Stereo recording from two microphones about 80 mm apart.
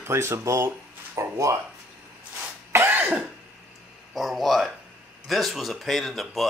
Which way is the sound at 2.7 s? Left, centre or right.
Right.